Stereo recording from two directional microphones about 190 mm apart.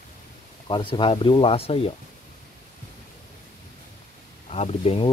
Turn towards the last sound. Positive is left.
turn(degrees=35)  # may be behind; listen again after turning